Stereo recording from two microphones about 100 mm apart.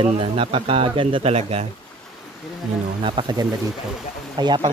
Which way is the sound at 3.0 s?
60° right (ahead or behind).